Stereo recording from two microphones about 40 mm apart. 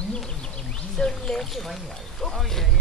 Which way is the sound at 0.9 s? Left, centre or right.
Centre.